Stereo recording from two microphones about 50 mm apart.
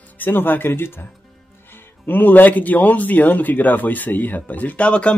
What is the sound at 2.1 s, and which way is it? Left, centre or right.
Speech, left.